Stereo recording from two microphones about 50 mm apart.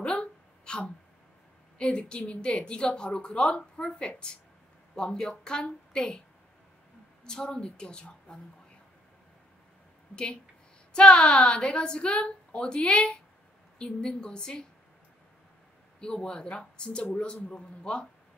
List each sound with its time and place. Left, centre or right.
0.0 s a sound: centre
1.8 s speech: centre
7.2 s speech: centre
10.9 s a woman's voice: centre
16.0 s speech: centre